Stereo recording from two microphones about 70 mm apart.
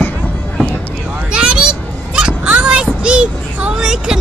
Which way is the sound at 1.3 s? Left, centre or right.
Centre.